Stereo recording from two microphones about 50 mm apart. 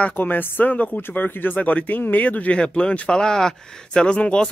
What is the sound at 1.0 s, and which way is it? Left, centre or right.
Speech, left.